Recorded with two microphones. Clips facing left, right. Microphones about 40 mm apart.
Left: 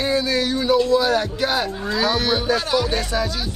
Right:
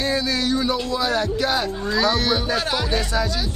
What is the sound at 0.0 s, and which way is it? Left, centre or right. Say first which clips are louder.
Speech: left 2 dB; centre.